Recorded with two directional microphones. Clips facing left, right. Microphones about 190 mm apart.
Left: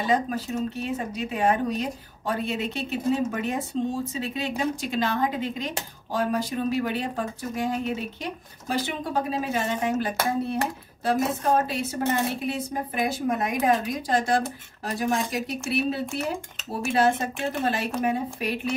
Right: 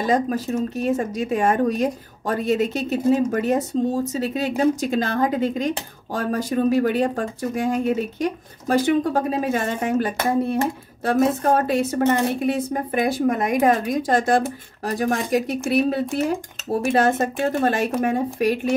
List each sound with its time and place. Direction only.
0.0 s speech: 45° right (ahead or behind)
15.6 s speech: 55° right (ahead or behind)